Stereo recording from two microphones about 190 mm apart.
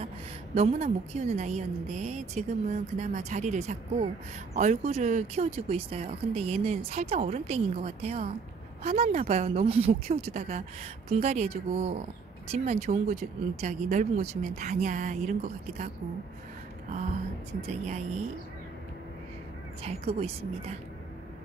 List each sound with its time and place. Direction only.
0.6 s speech: 35° right (ahead or behind)
17.6 s speech: 35° right (ahead or behind)
19.8 s speech: 30° right (ahead or behind)